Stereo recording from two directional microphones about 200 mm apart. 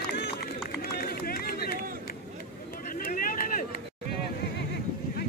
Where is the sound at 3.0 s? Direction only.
45° left (ahead or behind).